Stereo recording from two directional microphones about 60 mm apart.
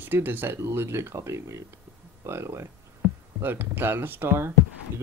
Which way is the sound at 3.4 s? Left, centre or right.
Right.